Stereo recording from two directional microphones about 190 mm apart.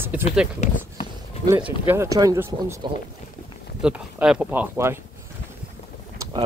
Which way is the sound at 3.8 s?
5° right (ahead or behind).